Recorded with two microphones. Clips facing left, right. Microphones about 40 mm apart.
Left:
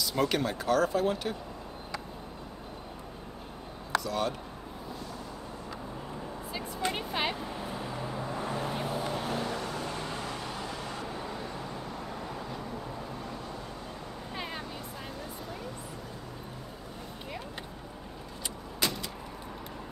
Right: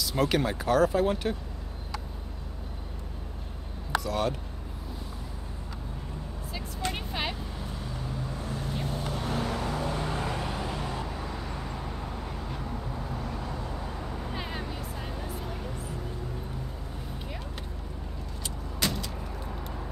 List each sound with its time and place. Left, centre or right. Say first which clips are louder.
0.0 s speech: right 2 dB; centre
4.0 s speech: right 2 dB; centre
6.5 s vehicle: left 1 dB; centre
7.4 s vehicle: left 2 dB; centre
8.4 s vehicle: left 3 dB; left
8.7 s vehicle: left 1 dB; centre
9.3 s vehicle: right 2 dB; centre
13.0 s vehicle: right 3 dB; centre
14.6 s music: right 3 dB; centre
18.8 s vehicle: right 1 dB; centre